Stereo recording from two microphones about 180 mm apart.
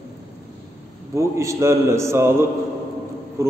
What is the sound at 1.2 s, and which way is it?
A man's voice, 15° right (ahead or behind).